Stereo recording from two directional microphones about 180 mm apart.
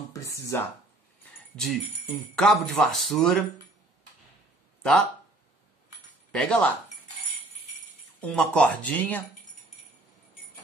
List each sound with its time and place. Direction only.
0.1 s a sound: 15° left (ahead or behind)
1.6 s speech: centre (ahead or behind)
6.3 s speech: 5° left (ahead or behind)
8.2 s speech: 5° left (ahead or behind)